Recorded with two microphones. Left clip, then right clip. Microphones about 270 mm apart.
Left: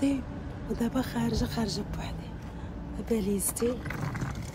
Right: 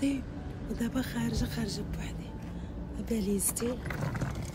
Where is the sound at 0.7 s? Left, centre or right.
Centre.